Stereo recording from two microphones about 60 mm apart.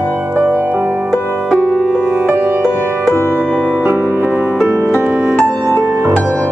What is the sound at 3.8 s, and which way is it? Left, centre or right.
Music, right.